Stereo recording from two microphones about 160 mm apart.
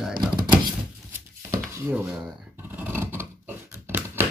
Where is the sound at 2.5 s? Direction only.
10° right (ahead or behind).